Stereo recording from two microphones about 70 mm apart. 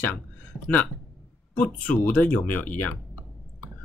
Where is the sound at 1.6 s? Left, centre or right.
Left.